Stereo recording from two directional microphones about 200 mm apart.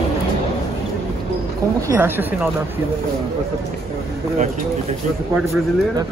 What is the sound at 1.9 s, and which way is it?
Speech, 10° right (ahead or behind).